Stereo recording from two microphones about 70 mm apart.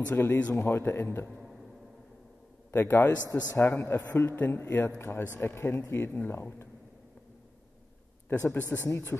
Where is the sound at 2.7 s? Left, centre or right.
Left.